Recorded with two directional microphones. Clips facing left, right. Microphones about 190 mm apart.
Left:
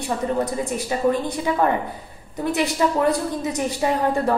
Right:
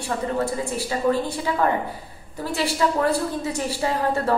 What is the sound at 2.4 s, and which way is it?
A woman's voice, 20° left (ahead or behind).